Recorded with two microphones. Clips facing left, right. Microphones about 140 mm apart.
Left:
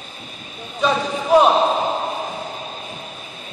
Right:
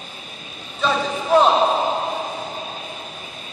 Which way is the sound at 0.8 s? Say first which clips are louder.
Left 2 dB; 10° left (ahead or behind).